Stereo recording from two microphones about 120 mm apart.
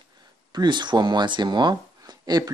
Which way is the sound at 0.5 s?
35° right (ahead or behind).